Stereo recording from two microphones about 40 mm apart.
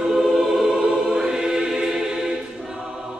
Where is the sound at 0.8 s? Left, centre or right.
Centre.